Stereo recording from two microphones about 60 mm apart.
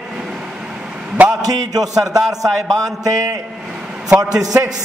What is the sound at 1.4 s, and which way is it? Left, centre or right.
A man's voice, right.